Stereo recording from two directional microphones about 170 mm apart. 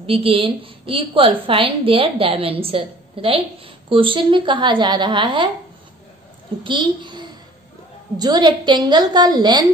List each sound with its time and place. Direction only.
0.0 s a woman's voice: 35° right (ahead or behind)
6.6 s a woman's voice: 30° right (ahead or behind)